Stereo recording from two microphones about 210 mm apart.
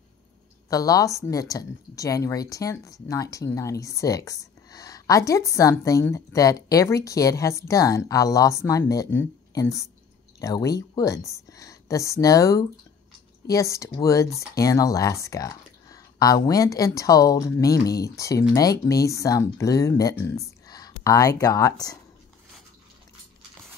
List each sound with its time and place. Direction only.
0.7 s speech: 15° left (ahead or behind)